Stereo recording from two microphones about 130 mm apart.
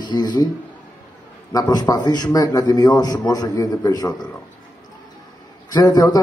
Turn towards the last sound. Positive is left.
turn(degrees=30)  # may be behind; listen again after turning